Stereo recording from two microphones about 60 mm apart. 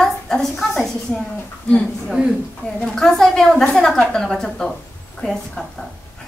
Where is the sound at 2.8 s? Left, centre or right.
Centre.